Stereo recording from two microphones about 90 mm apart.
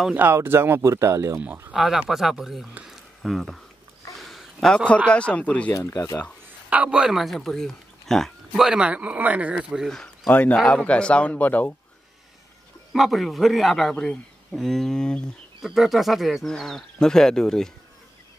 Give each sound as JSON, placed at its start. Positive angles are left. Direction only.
{"t": 0.1, "sound": "speech", "side_deg": -25}
{"t": 1.7, "sound": "speech", "side_deg": -5}
{"t": 2.8, "sound": "a sound", "side_deg": 0}
{"t": 4.1, "sound": "a man's voice", "side_deg": 0}
{"t": 5.7, "sound": "speech", "side_deg": 35}
{"t": 6.7, "sound": "speech", "side_deg": -15}
{"t": 9.8, "sound": "a man's voice", "side_deg": 10}
{"t": 12.9, "sound": "speech", "side_deg": 0}
{"t": 15.6, "sound": "speech", "side_deg": 0}